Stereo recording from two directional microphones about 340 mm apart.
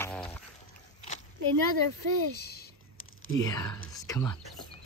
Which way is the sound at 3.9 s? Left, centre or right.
Centre.